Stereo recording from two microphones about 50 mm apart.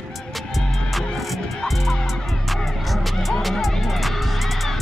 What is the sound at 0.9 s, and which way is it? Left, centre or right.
Music, centre.